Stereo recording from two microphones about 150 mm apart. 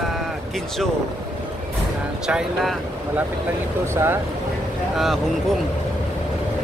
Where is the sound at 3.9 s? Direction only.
15° right (ahead or behind).